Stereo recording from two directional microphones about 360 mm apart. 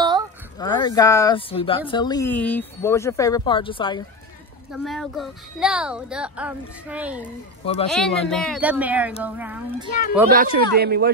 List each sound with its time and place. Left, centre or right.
0.6 s speech: centre
4.7 s speech: centre
7.6 s speech: centre
7.9 s speech: centre
10.2 s speech: right